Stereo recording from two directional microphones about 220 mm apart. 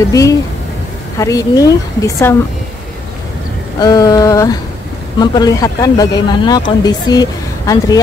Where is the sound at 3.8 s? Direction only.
15° left (ahead or behind).